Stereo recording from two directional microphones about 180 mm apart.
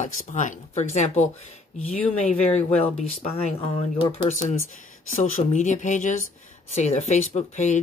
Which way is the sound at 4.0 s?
30° left (ahead or behind).